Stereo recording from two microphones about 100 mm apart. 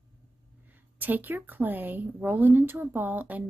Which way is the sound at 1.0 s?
20° right (ahead or behind).